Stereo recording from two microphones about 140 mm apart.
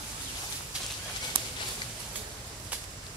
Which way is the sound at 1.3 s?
40° right (ahead or behind).